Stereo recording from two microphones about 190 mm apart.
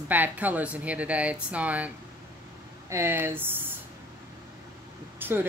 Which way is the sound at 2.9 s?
15° right (ahead or behind).